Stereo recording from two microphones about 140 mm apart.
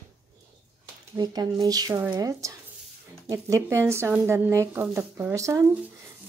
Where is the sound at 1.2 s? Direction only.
30° right (ahead or behind).